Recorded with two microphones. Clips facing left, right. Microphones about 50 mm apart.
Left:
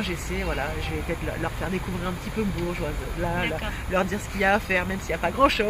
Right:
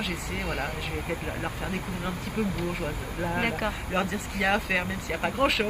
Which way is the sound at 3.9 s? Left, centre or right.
Left.